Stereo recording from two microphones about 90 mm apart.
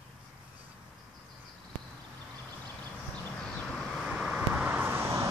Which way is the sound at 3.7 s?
5° right (ahead or behind).